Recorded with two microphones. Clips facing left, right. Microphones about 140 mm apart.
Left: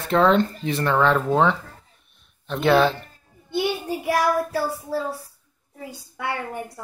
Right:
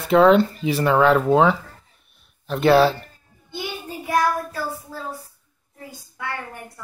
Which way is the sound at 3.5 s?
70° left (ahead or behind).